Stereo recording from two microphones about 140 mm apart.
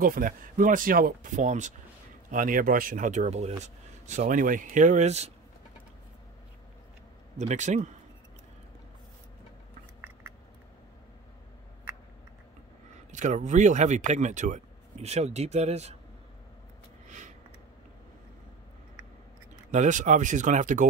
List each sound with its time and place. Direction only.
0.0 s speech: 80° right; by 1.7 s 60° right (ahead or behind)
2.3 s speech: 75° right (ahead or behind); by 5.3 s 50° right (ahead or behind)
7.3 s speech: 60° right (ahead or behind)
13.1 s speech: 60° right (ahead or behind)
19.7 s speech: 60° right (ahead or behind)